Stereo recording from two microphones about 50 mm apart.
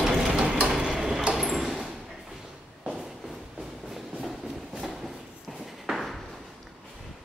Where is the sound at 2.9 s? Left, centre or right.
Centre.